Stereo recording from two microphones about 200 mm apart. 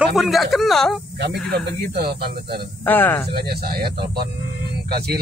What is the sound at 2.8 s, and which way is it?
Speech, 10° left (ahead or behind).